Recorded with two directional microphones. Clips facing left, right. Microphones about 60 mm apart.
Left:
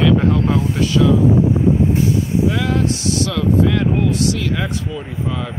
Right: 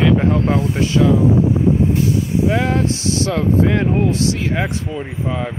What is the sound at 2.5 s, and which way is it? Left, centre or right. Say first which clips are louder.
Speech: right 1 dB; right.